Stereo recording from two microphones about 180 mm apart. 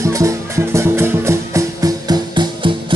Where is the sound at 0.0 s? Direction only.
15° right (ahead or behind).